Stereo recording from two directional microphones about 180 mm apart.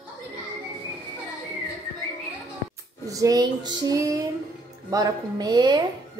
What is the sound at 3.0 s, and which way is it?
Female singing, 20° right (ahead or behind).